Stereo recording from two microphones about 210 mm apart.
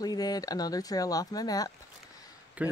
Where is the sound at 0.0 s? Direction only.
20° left (ahead or behind).